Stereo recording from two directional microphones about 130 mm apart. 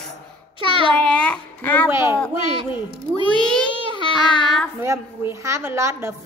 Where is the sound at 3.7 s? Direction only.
40° right (ahead or behind).